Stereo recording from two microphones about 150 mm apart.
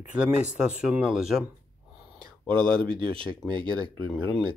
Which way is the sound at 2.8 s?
35° right (ahead or behind).